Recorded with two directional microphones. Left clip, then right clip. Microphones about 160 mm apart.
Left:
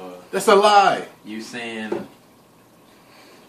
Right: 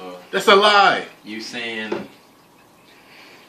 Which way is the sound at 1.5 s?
Centre (ahead or behind).